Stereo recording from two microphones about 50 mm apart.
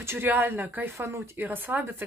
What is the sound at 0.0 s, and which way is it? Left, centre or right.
Speech, right.